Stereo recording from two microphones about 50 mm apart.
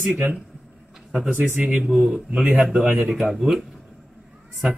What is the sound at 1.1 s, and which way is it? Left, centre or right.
Speech, right.